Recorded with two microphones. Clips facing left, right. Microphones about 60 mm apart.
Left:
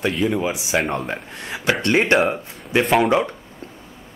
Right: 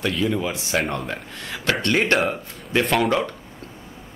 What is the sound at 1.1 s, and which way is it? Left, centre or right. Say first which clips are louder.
Speech: left 2 dB; centre.